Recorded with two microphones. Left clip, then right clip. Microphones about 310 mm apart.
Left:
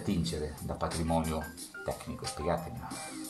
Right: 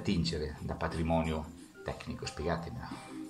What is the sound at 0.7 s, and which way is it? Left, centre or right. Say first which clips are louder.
Speech: left 1 dB; centre.